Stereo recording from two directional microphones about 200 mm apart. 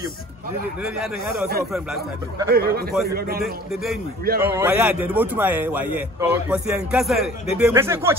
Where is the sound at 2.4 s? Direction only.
50° right (ahead or behind).